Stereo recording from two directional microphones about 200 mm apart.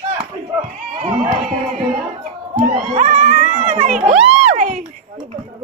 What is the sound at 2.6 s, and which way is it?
Crowd, 45° right (ahead or behind).